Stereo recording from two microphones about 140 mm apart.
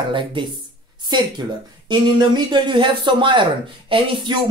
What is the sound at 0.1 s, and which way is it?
Speech, 35° right (ahead or behind).